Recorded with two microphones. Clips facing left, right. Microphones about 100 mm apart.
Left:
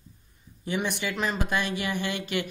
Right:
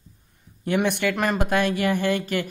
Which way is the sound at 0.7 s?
60° right (ahead or behind).